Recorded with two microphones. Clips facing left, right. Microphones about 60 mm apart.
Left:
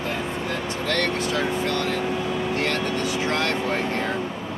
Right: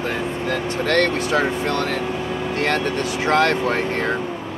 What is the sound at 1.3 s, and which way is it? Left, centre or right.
Speech, right.